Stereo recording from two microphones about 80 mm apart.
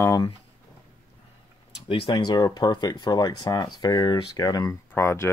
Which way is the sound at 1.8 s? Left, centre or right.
Left.